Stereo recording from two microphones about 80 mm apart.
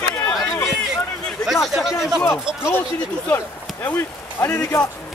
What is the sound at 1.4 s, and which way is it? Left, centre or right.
Speech, centre.